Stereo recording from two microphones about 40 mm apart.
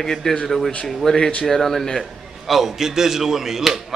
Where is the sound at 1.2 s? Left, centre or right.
Left.